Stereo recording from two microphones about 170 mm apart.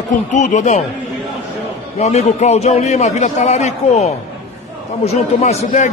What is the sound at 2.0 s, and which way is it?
A man's voice, 40° left (ahead or behind).